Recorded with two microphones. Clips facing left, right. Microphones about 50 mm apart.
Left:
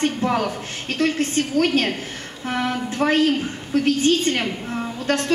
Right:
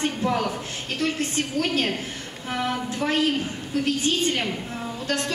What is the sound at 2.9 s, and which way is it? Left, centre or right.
A woman's voice, left.